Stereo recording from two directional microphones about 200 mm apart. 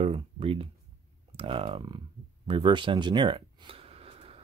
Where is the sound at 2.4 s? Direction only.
25° right (ahead or behind).